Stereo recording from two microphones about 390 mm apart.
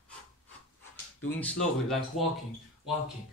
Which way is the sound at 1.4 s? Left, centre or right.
Centre.